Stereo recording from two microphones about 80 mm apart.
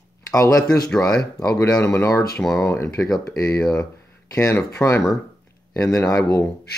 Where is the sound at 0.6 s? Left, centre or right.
Centre.